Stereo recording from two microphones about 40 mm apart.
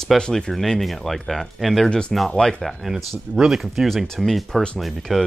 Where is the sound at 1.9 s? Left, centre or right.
Left.